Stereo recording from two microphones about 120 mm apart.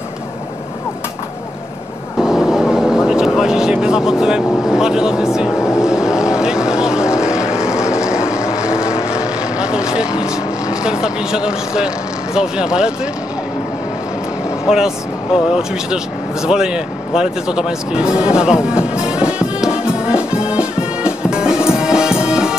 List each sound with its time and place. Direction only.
2.1 s vehicle: 5° right (ahead or behind)
3.1 s speech: 5° right (ahead or behind)
5.6 s speech: 25° left (ahead or behind)
5.9 s vehicle: 5° right (ahead or behind)
8.4 s vehicle: 25° left (ahead or behind)
9.1 s vehicle: 5° right (ahead or behind)
10.8 s speech: 5° right (ahead or behind)
14.7 s speech: 5° right (ahead or behind)
16.4 s music: 5° right (ahead or behind)